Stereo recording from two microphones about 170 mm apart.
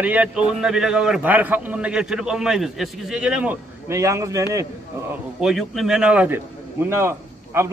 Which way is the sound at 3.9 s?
20° right (ahead or behind).